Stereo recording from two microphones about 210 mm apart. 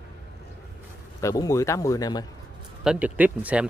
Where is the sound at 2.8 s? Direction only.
5° right (ahead or behind).